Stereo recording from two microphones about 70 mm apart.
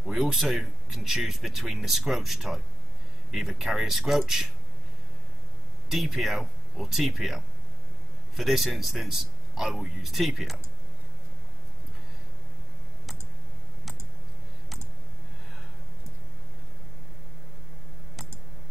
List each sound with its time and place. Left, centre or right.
0.0 s speech: centre
5.9 s speech: centre